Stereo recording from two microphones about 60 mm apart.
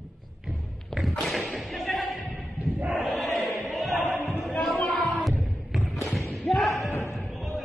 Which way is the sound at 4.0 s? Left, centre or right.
Left.